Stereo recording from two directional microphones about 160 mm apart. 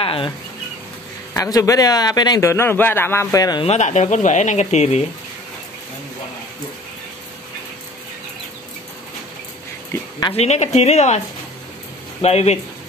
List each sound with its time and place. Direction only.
0.0 s speech: 35° left (ahead or behind)
1.3 s a man's voice: 20° left (ahead or behind)
3.6 s speech: 45° left (ahead or behind)
9.9 s a sound: 20° left (ahead or behind)
10.3 s speech: 45° left (ahead or behind)
12.2 s speech: 40° left (ahead or behind)